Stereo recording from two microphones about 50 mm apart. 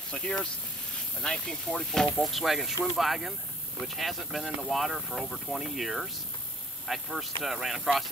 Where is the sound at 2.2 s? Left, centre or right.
Centre.